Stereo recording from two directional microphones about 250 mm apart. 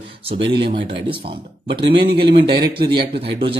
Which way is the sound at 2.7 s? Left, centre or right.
Centre.